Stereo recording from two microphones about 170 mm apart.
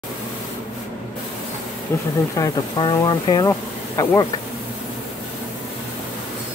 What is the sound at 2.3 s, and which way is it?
Speech, 25° left (ahead or behind).